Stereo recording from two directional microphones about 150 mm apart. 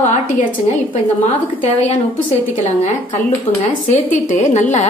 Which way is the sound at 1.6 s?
45° left (ahead or behind).